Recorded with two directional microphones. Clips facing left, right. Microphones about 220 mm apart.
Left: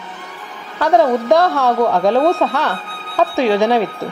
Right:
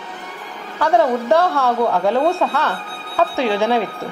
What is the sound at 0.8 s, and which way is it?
A woman's voice, 15° left (ahead or behind).